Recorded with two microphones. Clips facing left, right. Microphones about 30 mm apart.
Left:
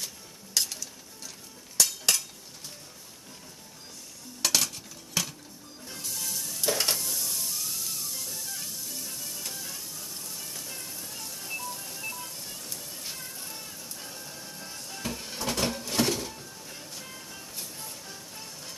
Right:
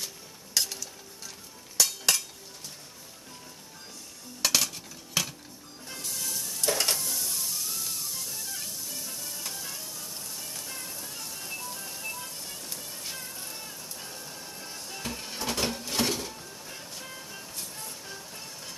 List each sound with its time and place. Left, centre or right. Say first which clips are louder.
0.6 s mechanisms: even; centre
1.8 s a sound: even; centre
4.4 s cutlery: even; centre
5.9 s sizzle: even; centre